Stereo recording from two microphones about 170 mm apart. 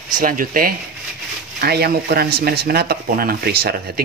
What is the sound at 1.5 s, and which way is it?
Speech, 70° right (ahead or behind).